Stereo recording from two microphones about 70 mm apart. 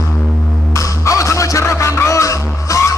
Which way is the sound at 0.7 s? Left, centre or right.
Left.